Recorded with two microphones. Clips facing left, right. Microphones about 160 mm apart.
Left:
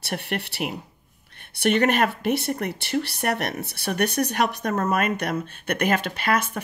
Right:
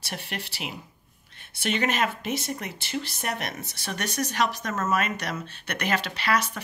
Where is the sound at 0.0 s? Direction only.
60° left (ahead or behind).